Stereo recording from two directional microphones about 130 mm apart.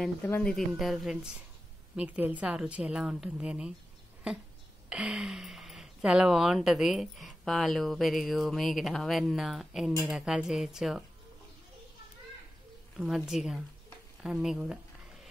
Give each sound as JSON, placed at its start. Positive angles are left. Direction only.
{"t": 0.3, "sound": "a woman's voice", "side_deg": 5}
{"t": 4.8, "sound": "speech", "side_deg": -10}
{"t": 12.9, "sound": "speech", "side_deg": -5}